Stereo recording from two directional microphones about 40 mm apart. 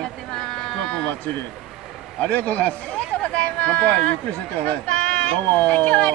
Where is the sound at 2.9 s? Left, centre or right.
Left.